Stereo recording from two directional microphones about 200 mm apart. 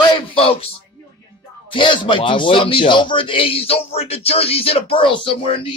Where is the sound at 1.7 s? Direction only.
25° left (ahead or behind).